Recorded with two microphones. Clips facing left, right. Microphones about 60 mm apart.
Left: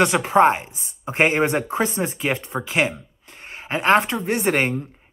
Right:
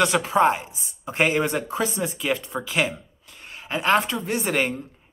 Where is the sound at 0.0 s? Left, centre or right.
Left.